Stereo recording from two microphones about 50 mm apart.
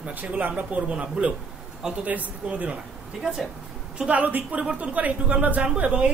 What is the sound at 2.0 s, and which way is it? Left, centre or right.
Speech, right.